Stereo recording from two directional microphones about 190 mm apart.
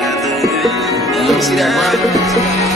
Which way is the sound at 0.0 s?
Centre (ahead or behind).